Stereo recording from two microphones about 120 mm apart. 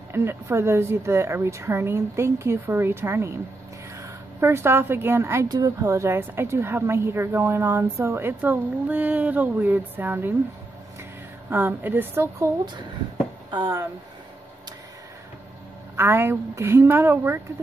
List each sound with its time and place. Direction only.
0.1 s a woman's voice: 20° right (ahead or behind)
11.5 s a woman's voice: 15° right (ahead or behind)
13.5 s speech: 35° right (ahead or behind)
16.0 s a woman's voice: 20° right (ahead or behind)